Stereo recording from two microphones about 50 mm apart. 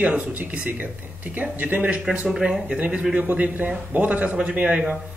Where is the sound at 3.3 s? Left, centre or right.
Right.